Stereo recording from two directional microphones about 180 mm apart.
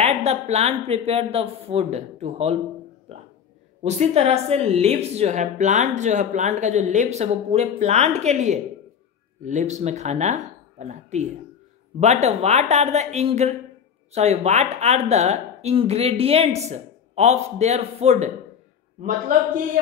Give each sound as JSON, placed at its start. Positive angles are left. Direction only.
{"t": 0.0, "sound": "a woman's voice", "side_deg": -35}
{"t": 3.8, "sound": "a woman's voice", "side_deg": -35}